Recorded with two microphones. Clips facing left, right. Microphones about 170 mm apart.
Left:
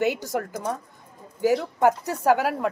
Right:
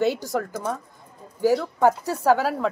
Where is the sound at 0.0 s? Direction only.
15° left (ahead or behind).